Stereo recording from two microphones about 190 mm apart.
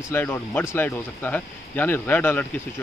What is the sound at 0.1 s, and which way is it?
Speech, 10° left (ahead or behind).